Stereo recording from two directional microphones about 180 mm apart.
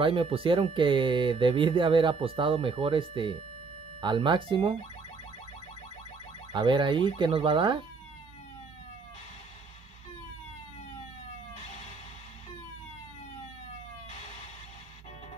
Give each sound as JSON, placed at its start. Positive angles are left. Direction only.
{"t": 0.0, "sound": "speech", "side_deg": -30}
{"t": 6.5, "sound": "speech", "side_deg": -25}